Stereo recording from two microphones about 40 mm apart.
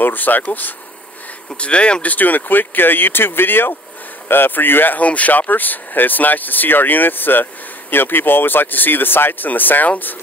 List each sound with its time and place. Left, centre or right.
0.0 s speech: left
1.6 s speech: left
2.0 s speech: left
4.9 s speech: left